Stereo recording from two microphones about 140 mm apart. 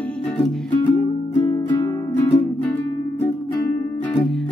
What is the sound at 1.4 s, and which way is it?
Music, 30° left (ahead or behind).